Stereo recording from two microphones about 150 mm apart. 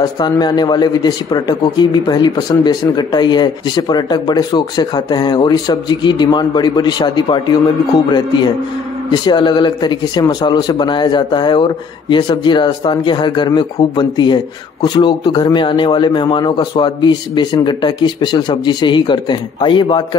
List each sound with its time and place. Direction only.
0.0 s speech: 30° left (ahead or behind)